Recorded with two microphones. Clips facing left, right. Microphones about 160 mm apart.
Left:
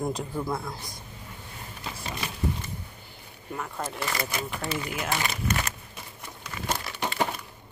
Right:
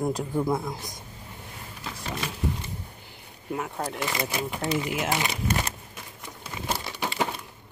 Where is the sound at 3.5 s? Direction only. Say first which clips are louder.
Right 3 dB; 15° right (ahead or behind).